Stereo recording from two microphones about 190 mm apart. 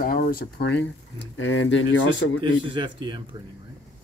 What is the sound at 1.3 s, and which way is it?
Speech, 90° left.